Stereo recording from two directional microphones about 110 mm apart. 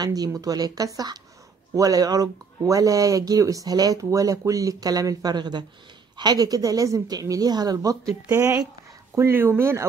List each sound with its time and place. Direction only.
0.0 s speech: 35° right (ahead or behind)